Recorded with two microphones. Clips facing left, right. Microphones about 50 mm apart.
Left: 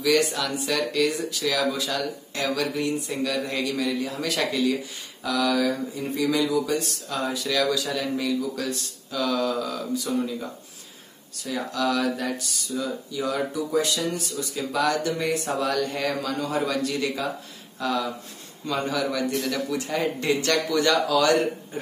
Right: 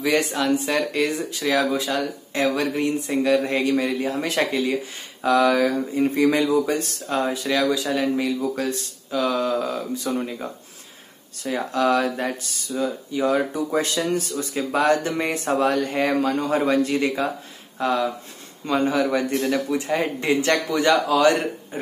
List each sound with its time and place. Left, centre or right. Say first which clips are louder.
0.0 s a man's voice: right 1 dB; right